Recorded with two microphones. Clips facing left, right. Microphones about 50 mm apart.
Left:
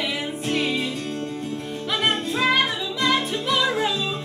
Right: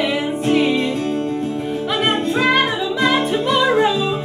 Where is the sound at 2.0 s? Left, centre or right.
Centre.